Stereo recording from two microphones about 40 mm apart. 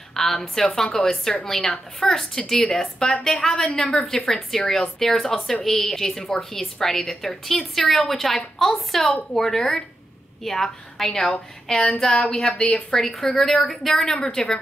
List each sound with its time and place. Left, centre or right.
0.1 s a woman's voice: centre
12.7 s a woman's voice: centre